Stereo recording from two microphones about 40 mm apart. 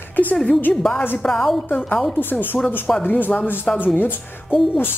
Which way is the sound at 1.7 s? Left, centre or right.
Left.